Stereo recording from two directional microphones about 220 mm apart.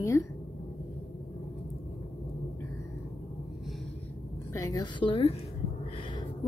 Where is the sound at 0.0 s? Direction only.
10° left (ahead or behind).